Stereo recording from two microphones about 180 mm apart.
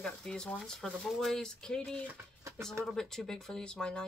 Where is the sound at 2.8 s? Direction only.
Centre (ahead or behind).